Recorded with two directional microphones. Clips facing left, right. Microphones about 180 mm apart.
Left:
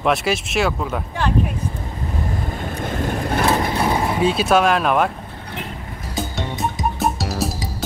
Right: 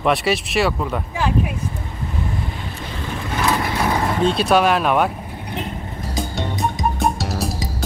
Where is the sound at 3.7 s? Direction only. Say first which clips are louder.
Left 1 dB; 25° left (ahead or behind).